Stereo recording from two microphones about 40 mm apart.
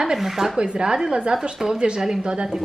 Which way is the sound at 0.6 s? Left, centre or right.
Right.